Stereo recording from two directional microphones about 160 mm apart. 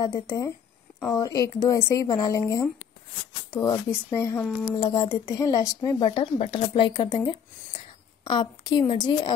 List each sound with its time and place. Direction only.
0.0 s speech: 25° left (ahead or behind)
5.0 s a woman's voice: 35° left (ahead or behind)
5.3 s speech: 20° left (ahead or behind)
8.2 s speech: 30° left (ahead or behind)